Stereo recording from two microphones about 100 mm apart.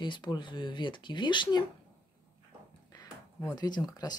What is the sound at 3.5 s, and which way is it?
Speech, 45° left (ahead or behind).